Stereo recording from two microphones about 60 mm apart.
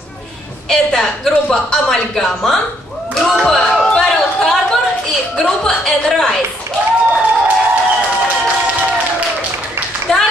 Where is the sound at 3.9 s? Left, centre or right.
Centre.